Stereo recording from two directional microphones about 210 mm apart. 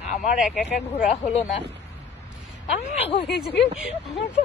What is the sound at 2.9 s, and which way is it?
Speech, 30° left (ahead or behind).